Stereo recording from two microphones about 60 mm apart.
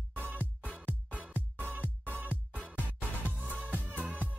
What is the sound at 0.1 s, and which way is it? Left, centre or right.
Music, right.